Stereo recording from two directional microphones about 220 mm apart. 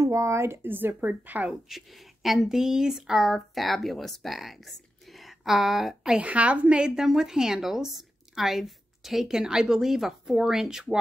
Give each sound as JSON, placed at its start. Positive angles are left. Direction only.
{"t": 0.0, "sound": "a woman's voice", "side_deg": -15}